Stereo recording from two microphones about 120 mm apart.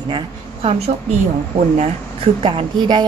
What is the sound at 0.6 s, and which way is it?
Speech, 55° right (ahead or behind).